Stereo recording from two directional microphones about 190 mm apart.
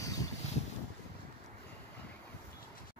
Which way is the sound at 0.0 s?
20° left (ahead or behind).